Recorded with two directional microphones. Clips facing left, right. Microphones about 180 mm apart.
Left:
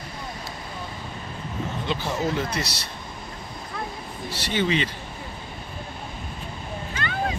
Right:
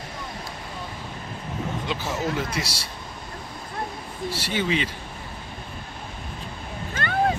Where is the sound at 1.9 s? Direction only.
5° right (ahead or behind).